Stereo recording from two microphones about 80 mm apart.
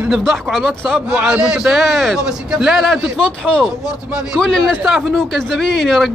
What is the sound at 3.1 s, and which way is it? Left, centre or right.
A man's voice, centre.